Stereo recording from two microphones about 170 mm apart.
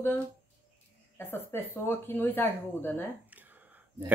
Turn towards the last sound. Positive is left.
turn(degrees=-10)  # may be behind; listen again after turning